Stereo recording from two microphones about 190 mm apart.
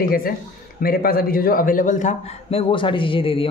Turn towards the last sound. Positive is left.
turn(degrees=30)  # may be behind; listen again after turning